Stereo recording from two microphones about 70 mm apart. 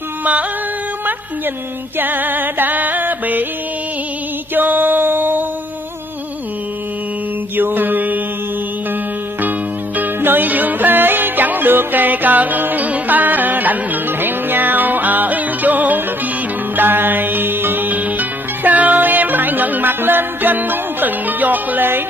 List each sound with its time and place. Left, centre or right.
0.2 s music: centre
2.0 s music: right
4.6 s music: right
7.5 s mantra: right
9.4 s music: right